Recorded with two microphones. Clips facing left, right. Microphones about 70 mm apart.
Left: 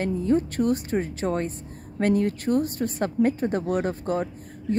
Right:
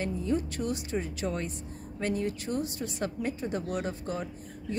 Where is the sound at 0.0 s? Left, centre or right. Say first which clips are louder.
Left 7 dB; left.